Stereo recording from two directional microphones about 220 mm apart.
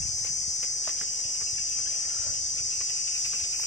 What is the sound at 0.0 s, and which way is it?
Cricket, 30° left (ahead or behind).